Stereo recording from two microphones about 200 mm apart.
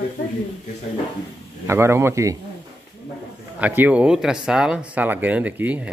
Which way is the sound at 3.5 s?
10° right (ahead or behind).